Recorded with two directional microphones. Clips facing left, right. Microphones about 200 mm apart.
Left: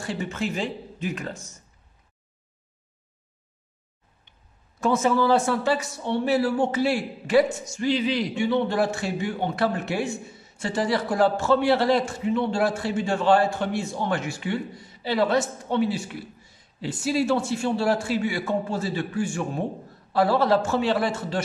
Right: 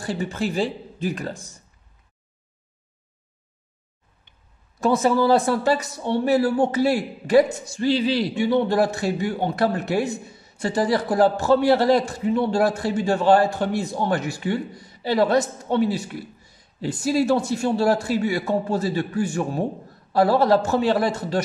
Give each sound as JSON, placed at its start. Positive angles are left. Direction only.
{"t": 0.0, "sound": "a man's voice", "side_deg": -35}
{"t": 4.7, "sound": "a man's voice", "side_deg": -35}